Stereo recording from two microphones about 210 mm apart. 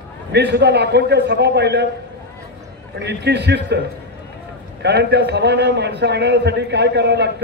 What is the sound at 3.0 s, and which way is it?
Speech, 55° right (ahead or behind).